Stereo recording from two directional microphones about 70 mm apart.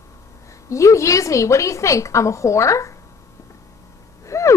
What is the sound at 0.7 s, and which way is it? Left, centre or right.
A woman's voice, left.